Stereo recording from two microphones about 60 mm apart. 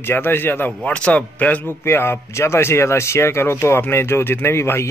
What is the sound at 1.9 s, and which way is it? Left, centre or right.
Speech, left.